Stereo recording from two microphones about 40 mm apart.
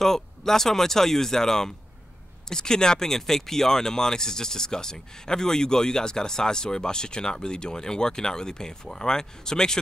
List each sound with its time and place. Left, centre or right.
0.0 s speech: centre